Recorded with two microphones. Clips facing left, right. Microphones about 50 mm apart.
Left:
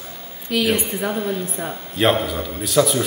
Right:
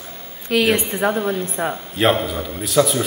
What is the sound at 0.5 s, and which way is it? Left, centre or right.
Speech, right.